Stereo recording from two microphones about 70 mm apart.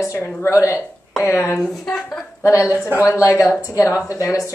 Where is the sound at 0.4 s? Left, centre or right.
Left.